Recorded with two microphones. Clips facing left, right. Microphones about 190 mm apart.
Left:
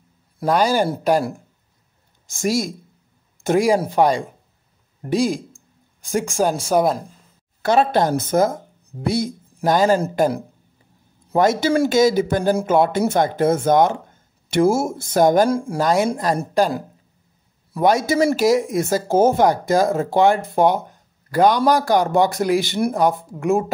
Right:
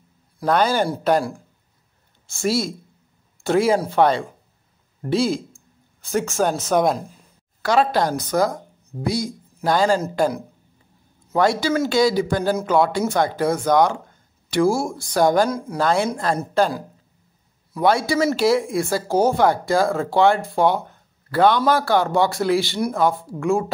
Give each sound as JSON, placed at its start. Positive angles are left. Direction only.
{"t": 0.5, "sound": "speech", "side_deg": 10}
{"t": 2.2, "sound": "speech", "side_deg": 15}
{"t": 7.6, "sound": "speech", "side_deg": 25}
{"t": 11.3, "sound": "speech", "side_deg": 20}
{"t": 15.8, "sound": "speech", "side_deg": 15}
{"t": 17.8, "sound": "speech", "side_deg": 20}
{"t": 21.5, "sound": "a man's voice", "side_deg": 45}
{"t": 21.7, "sound": "speech", "side_deg": 15}